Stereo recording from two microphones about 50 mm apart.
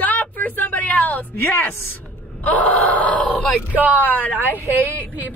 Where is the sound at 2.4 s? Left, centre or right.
Left.